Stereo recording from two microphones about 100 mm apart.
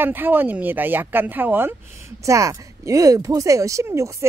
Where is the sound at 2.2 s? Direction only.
30° right (ahead or behind).